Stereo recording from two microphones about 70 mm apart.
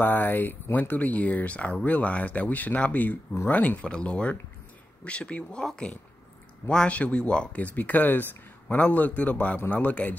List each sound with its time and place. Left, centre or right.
0.0 s speech: left